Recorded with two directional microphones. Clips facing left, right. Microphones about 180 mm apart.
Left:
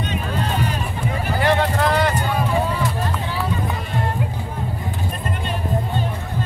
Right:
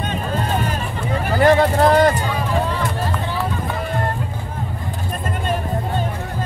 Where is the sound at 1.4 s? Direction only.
45° right (ahead or behind).